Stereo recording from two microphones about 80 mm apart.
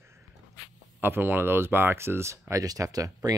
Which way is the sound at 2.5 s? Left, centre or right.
Right.